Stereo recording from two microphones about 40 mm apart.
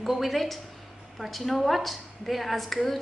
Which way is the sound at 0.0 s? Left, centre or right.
Centre.